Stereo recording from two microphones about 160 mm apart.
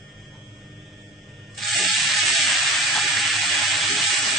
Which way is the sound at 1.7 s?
Centre (ahead or behind).